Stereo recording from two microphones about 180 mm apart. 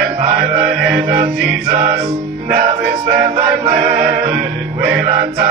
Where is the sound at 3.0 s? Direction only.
40° right (ahead or behind).